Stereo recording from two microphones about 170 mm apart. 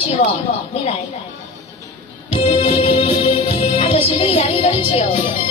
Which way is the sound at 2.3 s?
35° left (ahead or behind).